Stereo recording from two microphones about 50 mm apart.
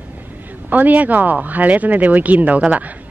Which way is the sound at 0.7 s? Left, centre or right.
Right.